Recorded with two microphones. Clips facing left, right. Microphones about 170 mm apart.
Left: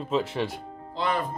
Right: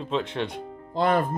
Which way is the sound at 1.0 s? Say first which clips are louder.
Right 5 dB; 50° right (ahead or behind).